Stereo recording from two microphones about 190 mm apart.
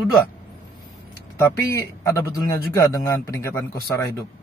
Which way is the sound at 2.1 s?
20° left (ahead or behind).